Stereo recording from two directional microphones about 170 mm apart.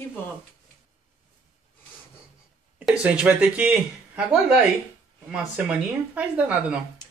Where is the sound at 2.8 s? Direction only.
10° right (ahead or behind).